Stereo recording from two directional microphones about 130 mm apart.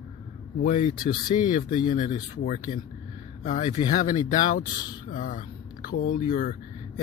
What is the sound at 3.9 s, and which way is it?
Speech, 80° left.